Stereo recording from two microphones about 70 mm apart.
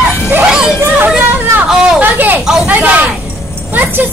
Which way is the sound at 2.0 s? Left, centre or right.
Right.